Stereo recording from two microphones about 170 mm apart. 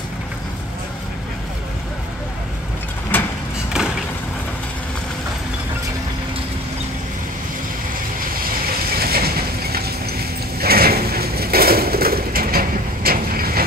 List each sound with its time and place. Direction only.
3.1 s vehicle: 10° left (ahead or behind)
8.9 s horse: 65° right (ahead or behind)